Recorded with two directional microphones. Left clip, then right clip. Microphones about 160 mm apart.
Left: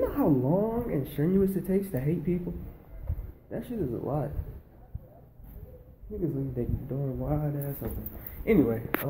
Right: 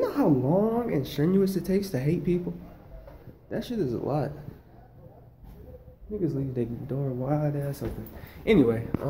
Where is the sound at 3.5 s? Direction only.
25° right (ahead or behind).